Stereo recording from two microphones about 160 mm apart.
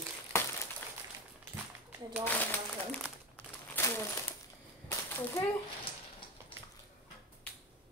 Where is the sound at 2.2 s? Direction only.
5° left (ahead or behind).